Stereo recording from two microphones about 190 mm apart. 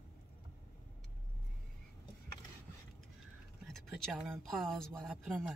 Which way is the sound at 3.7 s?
5° left (ahead or behind).